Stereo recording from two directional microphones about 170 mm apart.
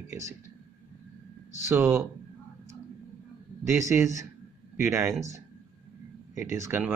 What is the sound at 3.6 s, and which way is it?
Speech, 15° right (ahead or behind).